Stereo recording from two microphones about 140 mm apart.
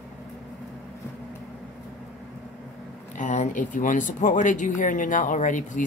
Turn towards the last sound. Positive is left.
turn(degrees=65)  # may be behind; listen again after turning